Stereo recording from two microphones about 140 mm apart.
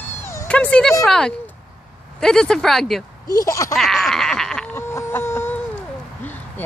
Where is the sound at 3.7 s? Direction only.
Centre (ahead or behind).